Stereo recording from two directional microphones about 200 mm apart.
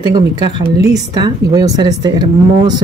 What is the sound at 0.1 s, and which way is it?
Speech, 20° right (ahead or behind).